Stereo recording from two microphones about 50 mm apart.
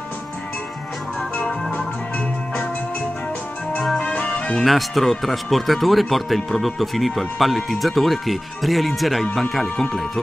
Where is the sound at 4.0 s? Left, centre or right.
Left.